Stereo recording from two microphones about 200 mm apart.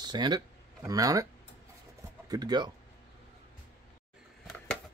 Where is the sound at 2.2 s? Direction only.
20° right (ahead or behind).